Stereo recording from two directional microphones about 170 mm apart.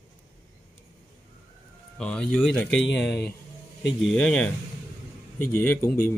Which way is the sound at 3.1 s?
70° left (ahead or behind).